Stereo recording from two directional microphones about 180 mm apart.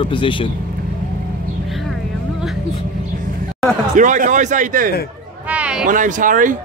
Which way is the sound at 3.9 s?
45° right (ahead or behind).